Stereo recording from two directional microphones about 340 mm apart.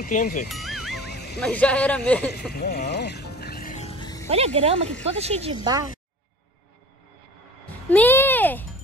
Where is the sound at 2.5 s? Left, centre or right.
Left; by 4.2 s centre.